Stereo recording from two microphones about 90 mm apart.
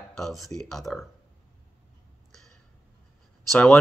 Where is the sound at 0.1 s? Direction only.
5° left (ahead or behind).